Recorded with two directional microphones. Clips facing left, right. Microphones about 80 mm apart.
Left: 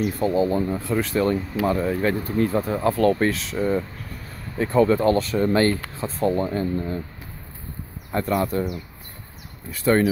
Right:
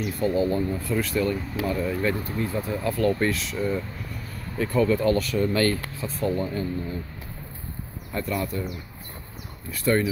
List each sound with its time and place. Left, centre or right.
0.0 s speech: left
3.2 s speech: left
8.1 s speech: left
9.7 s speech: left